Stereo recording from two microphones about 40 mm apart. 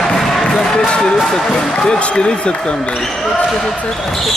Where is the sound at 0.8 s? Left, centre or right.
Left.